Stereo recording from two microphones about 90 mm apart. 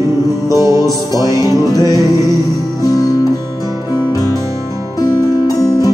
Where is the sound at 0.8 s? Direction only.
45° left (ahead or behind).